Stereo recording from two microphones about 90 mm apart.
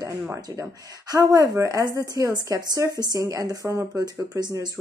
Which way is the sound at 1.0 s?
40° right (ahead or behind).